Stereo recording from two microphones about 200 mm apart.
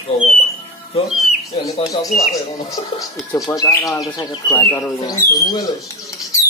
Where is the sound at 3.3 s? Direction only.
15° left (ahead or behind).